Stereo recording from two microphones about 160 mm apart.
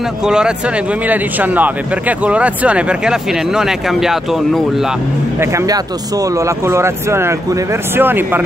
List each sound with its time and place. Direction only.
0.2 s speech: 5° right (ahead or behind)
5.4 s speech: 15° right (ahead or behind)